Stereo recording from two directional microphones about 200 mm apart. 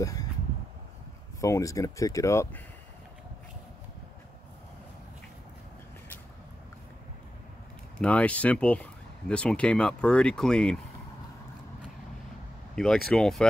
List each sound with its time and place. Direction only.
0.0 s a sound: 15° left (ahead or behind)
1.4 s speech: 15° left (ahead or behind)
8.0 s speech: 5° left (ahead or behind)
12.7 s speech: centre (ahead or behind)